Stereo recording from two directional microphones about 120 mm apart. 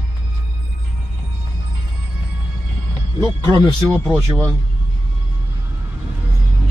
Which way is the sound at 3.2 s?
40° right (ahead or behind).